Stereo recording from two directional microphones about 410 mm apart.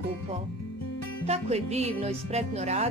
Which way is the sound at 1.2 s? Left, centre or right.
Centre.